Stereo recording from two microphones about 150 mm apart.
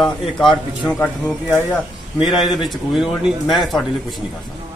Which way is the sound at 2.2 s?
Centre (ahead or behind).